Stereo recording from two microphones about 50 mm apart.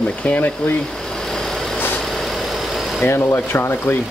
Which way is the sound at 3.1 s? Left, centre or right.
Left.